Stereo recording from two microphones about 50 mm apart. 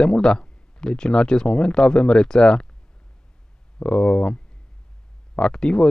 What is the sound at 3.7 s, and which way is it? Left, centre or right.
Speech, centre.